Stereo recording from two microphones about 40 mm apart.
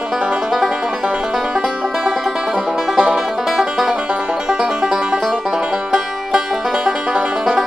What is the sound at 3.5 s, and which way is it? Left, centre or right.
Music, centre.